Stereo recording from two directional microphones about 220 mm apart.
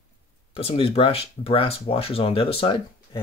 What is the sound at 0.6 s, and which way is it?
Speech, 25° left (ahead or behind).